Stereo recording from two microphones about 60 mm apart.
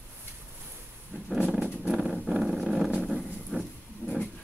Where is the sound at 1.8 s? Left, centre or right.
Centre.